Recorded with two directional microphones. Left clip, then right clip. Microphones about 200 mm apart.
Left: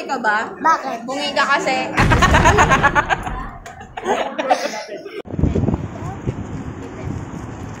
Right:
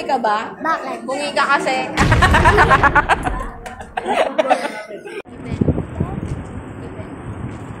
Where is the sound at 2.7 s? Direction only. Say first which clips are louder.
Right 2 dB; 35° right (ahead or behind).